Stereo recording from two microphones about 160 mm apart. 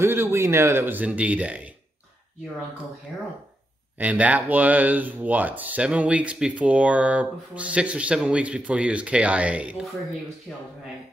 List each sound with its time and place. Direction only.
0.0 s speech: 15° right (ahead or behind)
4.0 s speech: 10° right (ahead or behind)